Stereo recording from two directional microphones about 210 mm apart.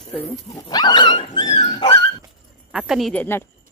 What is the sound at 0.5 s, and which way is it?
Dog, 20° left (ahead or behind).